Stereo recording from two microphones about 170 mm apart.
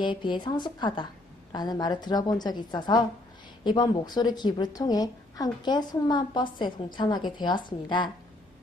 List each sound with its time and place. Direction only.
0.0 s a woman's voice: 30° left (ahead or behind)